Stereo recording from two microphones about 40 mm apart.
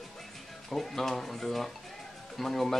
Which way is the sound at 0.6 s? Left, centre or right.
Centre.